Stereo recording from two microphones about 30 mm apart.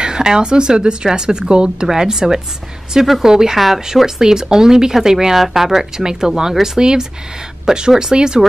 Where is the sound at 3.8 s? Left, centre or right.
Centre.